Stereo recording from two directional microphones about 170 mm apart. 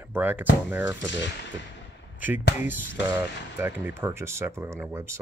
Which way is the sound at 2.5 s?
10° right (ahead or behind).